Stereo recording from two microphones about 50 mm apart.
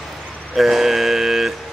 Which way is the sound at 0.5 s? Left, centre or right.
Centre.